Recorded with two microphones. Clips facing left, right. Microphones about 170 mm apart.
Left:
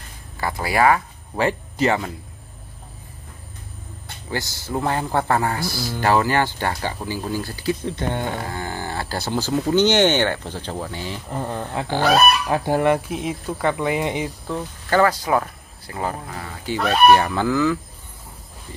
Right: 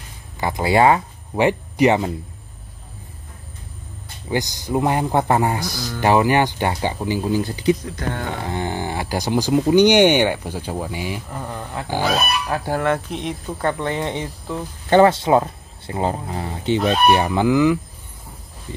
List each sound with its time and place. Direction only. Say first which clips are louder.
0.4 s speech: right 3 dB; 20° right (ahead or behind)
4.3 s a man's voice: right 5 dB; 15° right (ahead or behind)
7.8 s speech: left 2 dB; 25° left (ahead or behind)
8.4 s a man's voice: right 4 dB; 20° right (ahead or behind)
11.2 s speech: left 3 dB; 20° left (ahead or behind)
13.1 s speech: left 1 dB; 5° left (ahead or behind)
14.9 s speech: right 5 dB; 25° right (ahead or behind)